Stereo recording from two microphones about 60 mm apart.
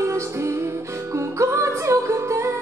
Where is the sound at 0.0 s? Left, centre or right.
Right.